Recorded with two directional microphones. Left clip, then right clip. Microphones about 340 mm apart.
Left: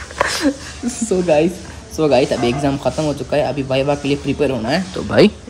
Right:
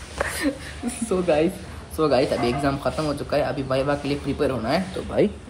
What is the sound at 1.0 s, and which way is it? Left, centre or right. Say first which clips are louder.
Speech: left 6 dB; centre.